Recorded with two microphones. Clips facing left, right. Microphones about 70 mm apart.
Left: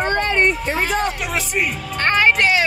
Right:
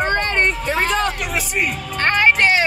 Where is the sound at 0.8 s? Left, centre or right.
Right.